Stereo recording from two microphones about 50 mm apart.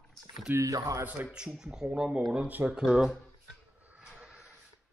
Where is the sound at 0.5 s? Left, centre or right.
Right.